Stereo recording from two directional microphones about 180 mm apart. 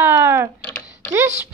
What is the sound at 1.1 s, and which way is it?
Speech, 15° right (ahead or behind).